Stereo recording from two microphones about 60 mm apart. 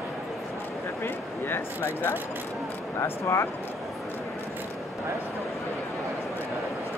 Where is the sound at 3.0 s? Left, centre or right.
Left.